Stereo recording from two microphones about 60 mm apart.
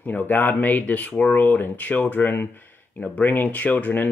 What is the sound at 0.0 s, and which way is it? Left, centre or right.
Speech, left.